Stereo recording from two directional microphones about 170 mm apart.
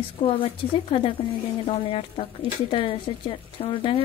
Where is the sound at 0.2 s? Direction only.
30° left (ahead or behind).